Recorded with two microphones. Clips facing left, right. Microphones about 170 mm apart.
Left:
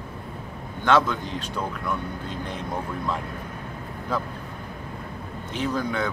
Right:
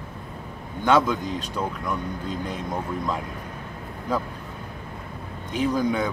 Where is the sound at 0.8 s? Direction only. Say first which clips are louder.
Right 1 dB; 10° right (ahead or behind).